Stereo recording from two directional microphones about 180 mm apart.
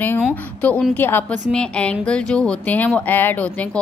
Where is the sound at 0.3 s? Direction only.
10° left (ahead or behind).